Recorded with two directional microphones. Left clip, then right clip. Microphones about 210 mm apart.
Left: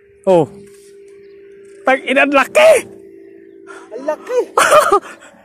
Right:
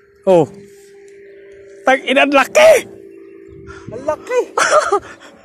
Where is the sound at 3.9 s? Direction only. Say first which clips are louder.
Even; 40° left (ahead or behind).